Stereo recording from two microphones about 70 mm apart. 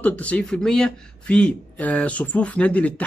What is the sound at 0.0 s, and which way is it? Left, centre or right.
Speech, centre.